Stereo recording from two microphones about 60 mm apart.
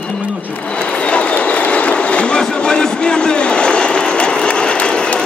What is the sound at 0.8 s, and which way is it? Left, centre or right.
Train, centre.